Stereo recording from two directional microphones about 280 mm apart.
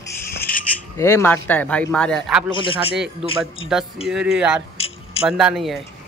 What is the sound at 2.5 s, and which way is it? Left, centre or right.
Speech, centre.